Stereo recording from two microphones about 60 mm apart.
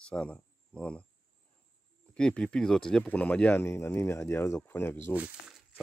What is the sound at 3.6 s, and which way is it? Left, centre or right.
Speech, left.